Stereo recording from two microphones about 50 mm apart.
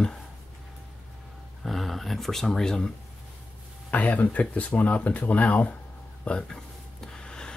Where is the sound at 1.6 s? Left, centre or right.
Centre.